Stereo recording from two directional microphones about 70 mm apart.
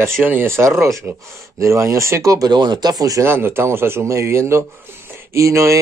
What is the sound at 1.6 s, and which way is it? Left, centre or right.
Speech, right.